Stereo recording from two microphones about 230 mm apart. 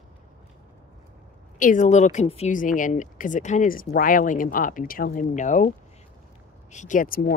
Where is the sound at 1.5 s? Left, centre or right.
Left.